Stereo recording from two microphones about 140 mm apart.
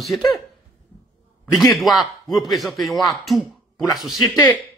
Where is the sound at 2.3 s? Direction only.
30° left (ahead or behind).